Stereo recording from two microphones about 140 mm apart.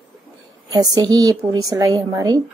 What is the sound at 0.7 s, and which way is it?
A woman's voice, 30° right (ahead or behind).